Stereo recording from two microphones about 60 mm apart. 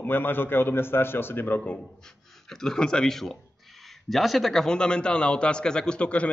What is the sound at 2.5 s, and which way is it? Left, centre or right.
A man's voice, centre.